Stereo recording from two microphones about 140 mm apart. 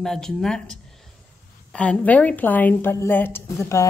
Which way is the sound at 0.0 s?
5° left (ahead or behind).